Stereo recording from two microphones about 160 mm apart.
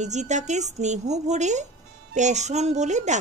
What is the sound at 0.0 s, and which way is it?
A woman's voice, 45° right (ahead or behind).